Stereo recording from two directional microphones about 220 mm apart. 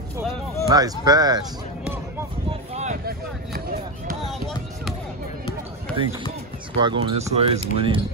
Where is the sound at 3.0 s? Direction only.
40° right (ahead or behind).